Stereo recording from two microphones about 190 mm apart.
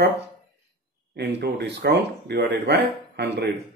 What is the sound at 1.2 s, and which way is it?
Speech, 60° right (ahead or behind).